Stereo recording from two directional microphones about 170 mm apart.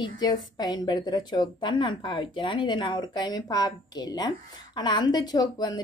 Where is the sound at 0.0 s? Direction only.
25° left (ahead or behind).